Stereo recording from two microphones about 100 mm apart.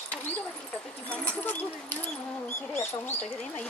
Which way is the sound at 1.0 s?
15° left (ahead or behind).